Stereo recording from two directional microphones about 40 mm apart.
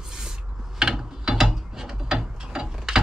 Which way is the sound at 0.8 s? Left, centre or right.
Centre.